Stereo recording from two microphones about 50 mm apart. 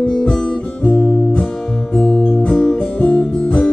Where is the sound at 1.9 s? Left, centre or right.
Centre.